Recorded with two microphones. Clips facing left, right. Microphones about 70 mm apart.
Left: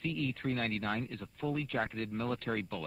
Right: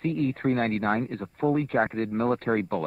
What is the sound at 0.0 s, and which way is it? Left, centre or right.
Speech, right.